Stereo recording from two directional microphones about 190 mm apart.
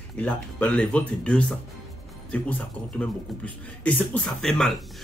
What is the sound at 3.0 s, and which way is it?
A man's voice, 10° left (ahead or behind).